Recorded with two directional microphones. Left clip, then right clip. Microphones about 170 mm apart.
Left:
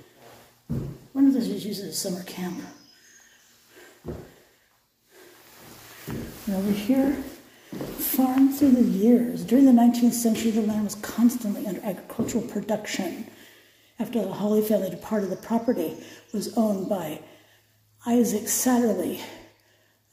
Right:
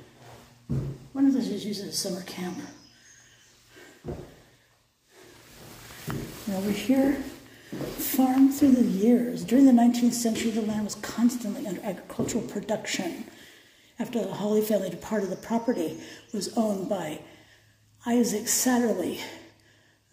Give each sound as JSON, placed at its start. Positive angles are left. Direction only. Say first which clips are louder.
{"t": 1.1, "sound": "a woman's voice", "louder": "left 3 dB", "side_deg": 15}
{"t": 6.5, "sound": "a woman's voice", "louder": "left 1 dB", "side_deg": 0}